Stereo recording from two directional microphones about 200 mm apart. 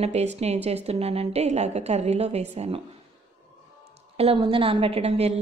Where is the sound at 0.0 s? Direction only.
35° right (ahead or behind).